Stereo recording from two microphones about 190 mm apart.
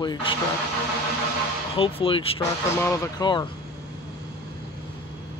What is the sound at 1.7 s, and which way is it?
Speech, 30° left (ahead or behind).